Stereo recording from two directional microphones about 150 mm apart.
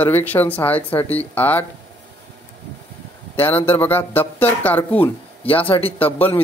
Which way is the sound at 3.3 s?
15° left (ahead or behind).